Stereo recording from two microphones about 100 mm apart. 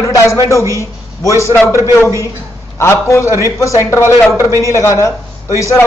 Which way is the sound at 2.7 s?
25° left (ahead or behind).